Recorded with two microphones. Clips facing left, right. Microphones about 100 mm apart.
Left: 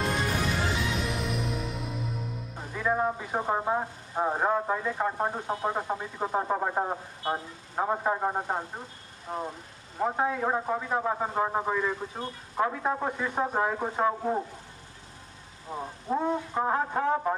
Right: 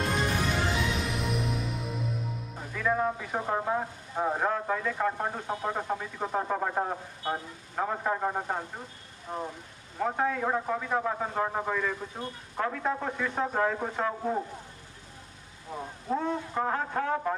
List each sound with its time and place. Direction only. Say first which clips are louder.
0.9 s music: even; centre (ahead or behind)
2.7 s speech: left 1 dB; 20° left (ahead or behind)
9.3 s speech: left 1 dB; 30° left (ahead or behind)
9.9 s speech: left 1 dB; 20° left (ahead or behind)
15.7 s speech: left 1 dB; 15° left (ahead or behind)